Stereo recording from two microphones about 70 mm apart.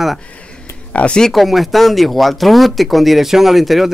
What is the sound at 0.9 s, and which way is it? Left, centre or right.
Speech, centre.